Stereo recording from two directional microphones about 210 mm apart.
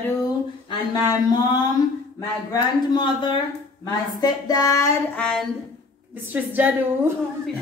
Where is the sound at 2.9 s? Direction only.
20° left (ahead or behind).